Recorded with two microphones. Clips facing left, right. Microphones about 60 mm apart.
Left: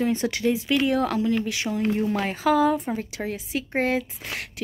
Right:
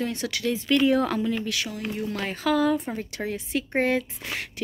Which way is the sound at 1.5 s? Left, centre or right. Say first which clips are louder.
Left 3 dB; left.